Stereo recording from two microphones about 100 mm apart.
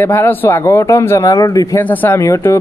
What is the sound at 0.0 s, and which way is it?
A man's voice, 20° left (ahead or behind).